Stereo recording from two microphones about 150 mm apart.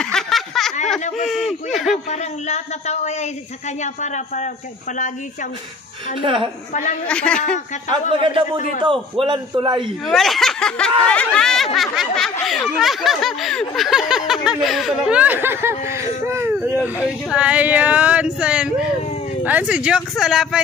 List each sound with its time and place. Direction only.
0.0 s a sound: 5° left (ahead or behind)
1.1 s speech: centre (ahead or behind)
2.0 s speech: 50° left (ahead or behind)
6.2 s a man's voice: 35° right (ahead or behind)
6.7 s a woman's voice: 55° left (ahead or behind)
7.1 s speech: 5° left (ahead or behind)
8.2 s a man's voice: 35° right (ahead or behind)
10.0 s speech: centre (ahead or behind)